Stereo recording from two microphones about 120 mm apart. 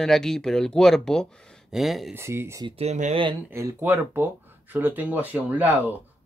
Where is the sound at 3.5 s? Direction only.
20° right (ahead or behind).